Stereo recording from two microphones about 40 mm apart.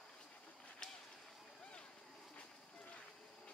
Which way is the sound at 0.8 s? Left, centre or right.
Left.